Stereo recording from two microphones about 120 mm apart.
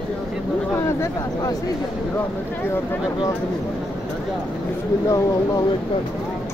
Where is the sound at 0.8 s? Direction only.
20° left (ahead or behind).